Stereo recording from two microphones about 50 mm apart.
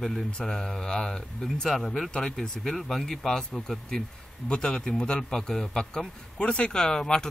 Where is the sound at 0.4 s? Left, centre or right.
Centre.